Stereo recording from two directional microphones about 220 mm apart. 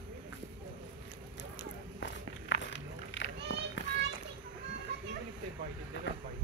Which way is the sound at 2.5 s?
60° left (ahead or behind).